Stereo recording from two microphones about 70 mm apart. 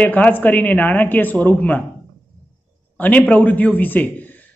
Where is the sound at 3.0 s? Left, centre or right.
Left.